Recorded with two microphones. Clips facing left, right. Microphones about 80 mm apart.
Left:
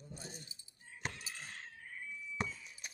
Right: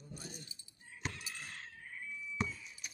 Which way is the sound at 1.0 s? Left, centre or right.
Left.